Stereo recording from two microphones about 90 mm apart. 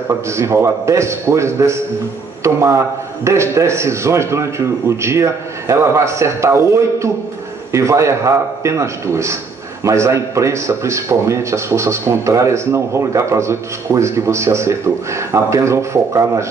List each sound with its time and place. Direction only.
0.3 s speech: 30° right (ahead or behind)